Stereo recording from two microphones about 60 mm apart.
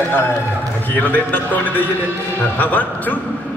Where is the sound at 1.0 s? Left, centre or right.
Left.